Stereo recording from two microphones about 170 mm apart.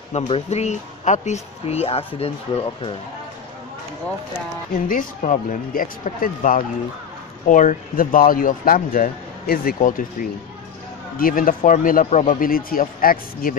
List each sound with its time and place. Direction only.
0.1 s speech: 40° left (ahead or behind)
4.8 s speech: 50° left (ahead or behind)
11.1 s speech: 55° left (ahead or behind)